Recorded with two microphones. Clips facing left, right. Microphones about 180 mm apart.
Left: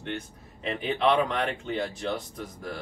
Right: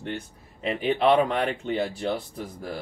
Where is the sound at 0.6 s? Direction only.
5° right (ahead or behind).